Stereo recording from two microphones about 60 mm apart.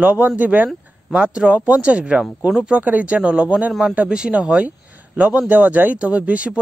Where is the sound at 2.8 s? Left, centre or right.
Right.